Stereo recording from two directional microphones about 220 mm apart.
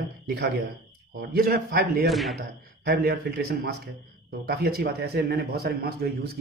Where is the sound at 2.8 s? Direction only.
45° right (ahead or behind).